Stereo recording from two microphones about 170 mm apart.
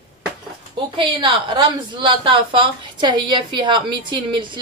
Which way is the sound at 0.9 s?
30° right (ahead or behind).